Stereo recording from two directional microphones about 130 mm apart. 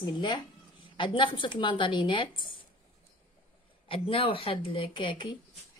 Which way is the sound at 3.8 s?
45° left (ahead or behind).